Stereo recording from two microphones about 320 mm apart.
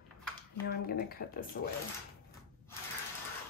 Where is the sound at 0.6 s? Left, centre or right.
Left.